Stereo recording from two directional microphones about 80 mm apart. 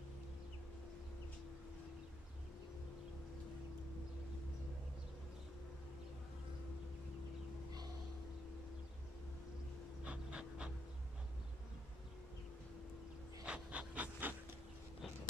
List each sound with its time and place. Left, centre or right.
10.0 s pant: centre
13.4 s pant: centre